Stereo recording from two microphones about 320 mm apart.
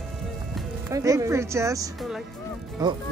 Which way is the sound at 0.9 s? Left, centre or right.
Centre.